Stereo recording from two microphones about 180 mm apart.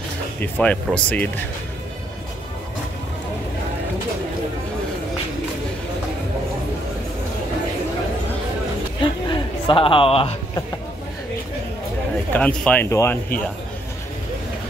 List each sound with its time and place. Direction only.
0.4 s speech: 10° left (ahead or behind)
9.0 s a sound: 30° left (ahead or behind)
12.3 s speech: 5° left (ahead or behind)